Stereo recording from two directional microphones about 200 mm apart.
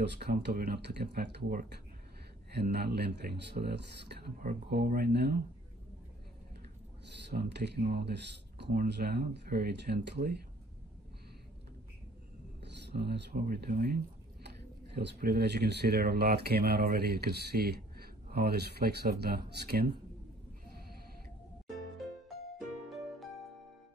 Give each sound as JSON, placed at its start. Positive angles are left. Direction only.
{"t": 0.0, "sound": "speech", "side_deg": -55}
{"t": 7.2, "sound": "speech", "side_deg": -55}
{"t": 12.8, "sound": "speech", "side_deg": -55}